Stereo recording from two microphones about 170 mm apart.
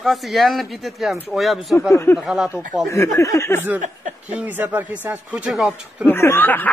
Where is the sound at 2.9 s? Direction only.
15° left (ahead or behind).